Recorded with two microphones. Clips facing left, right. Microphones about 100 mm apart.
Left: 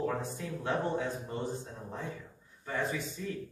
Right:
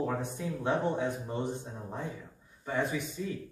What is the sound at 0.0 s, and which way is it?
Speech, 15° right (ahead or behind).